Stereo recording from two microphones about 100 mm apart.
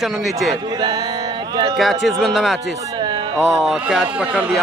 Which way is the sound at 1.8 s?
Centre (ahead or behind).